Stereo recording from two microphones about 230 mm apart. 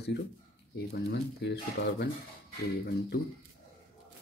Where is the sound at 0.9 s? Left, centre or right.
Left.